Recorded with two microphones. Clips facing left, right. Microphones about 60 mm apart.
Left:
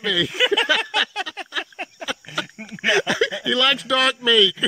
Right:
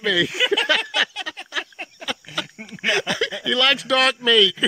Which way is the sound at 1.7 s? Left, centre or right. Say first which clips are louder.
Left 1 dB; centre.